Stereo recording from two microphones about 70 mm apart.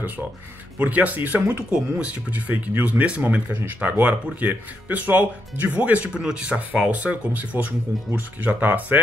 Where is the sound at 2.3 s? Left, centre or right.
Right.